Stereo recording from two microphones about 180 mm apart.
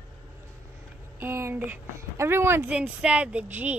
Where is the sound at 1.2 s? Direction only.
15° right (ahead or behind).